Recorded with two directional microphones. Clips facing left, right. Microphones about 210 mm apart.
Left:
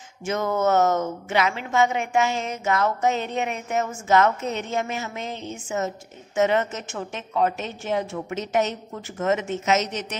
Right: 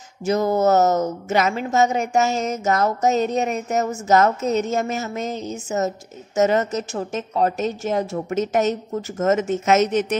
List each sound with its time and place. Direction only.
0.2 s a woman's voice: 35° right (ahead or behind); by 10.0 s 55° right (ahead or behind)